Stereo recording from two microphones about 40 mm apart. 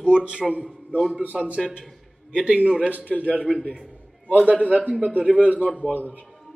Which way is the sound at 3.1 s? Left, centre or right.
Centre.